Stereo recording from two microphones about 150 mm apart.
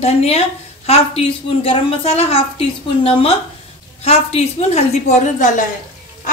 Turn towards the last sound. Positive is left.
turn(degrees=55)  # may be behind; listen again after turning